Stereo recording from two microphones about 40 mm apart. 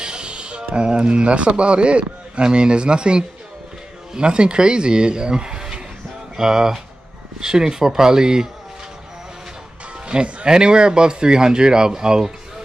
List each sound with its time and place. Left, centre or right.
0.0 s music: right
0.7 s speech: right
10.0 s speech: right